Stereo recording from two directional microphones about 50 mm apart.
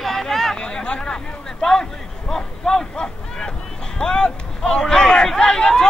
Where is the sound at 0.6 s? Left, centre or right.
Centre.